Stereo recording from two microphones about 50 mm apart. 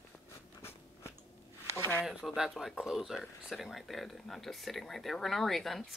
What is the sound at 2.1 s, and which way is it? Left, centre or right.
Speech, centre.